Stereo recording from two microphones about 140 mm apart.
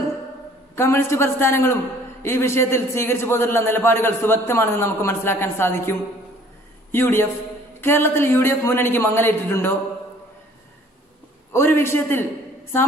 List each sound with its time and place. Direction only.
0.7 s a man's voice: 20° left (ahead or behind)
11.5 s a man's voice: 15° left (ahead or behind)